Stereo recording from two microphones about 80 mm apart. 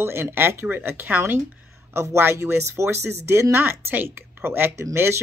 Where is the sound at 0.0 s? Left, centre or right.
Right.